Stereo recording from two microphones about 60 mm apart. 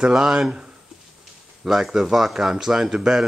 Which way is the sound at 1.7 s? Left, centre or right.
Centre.